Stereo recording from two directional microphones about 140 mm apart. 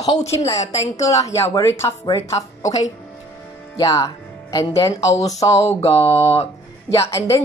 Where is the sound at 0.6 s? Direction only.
55° left (ahead or behind).